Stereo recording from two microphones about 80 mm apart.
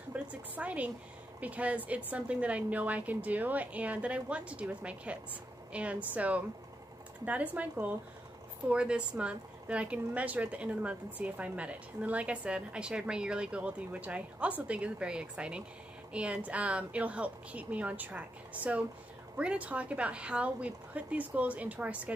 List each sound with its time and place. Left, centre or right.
0.1 s a sound: centre
1.4 s speech: centre
8.6 s speech: centre